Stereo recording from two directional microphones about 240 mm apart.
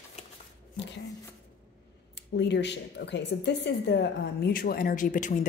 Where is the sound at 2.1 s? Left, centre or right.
Left.